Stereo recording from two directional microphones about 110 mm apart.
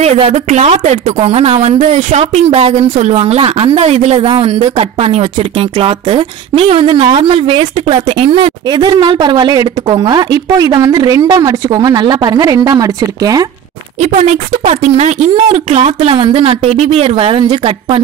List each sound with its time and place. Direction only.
0.3 s speech: 85° right
3.2 s speech: 60° right (ahead or behind)
4.3 s speech: 60° right (ahead or behind)
8.6 s a woman's voice: 40° right (ahead or behind)
13.9 s speech: 90° right; by 16.2 s 75° right (ahead or behind)
16.2 s speech: 50° right (ahead or behind)